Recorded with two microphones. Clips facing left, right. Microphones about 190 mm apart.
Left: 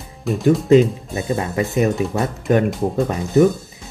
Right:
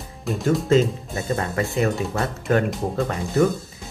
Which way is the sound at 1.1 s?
15° left (ahead or behind).